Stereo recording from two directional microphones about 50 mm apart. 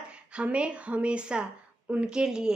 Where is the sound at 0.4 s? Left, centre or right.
Right.